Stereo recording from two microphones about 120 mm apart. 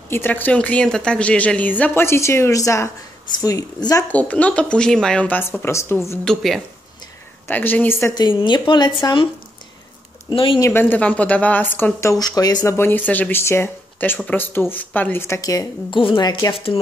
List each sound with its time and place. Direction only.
0.1 s a woman's voice: 15° left (ahead or behind)
4.1 s a woman's voice: 10° left (ahead or behind)
6.2 s a woman's voice: centre (ahead or behind)
7.4 s a woman's voice: 15° left (ahead or behind)
8.1 s speech: 40° left (ahead or behind)
10.3 s speech: 45° left (ahead or behind)
10.6 s a woman's voice: 20° left (ahead or behind)
12.7 s a woman's voice: 15° left (ahead or behind)
15.9 s speech: 45° left (ahead or behind)
16.5 s speech: 50° left (ahead or behind)